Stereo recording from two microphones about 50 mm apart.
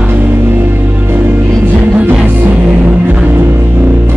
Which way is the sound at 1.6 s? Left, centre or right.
Right.